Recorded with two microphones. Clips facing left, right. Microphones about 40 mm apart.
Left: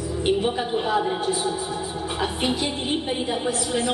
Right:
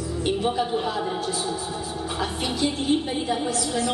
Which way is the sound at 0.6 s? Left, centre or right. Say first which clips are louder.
Left 2 dB; left.